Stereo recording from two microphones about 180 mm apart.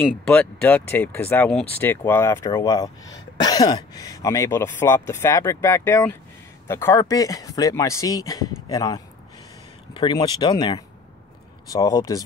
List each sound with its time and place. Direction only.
0.3 s speech: 10° left (ahead or behind)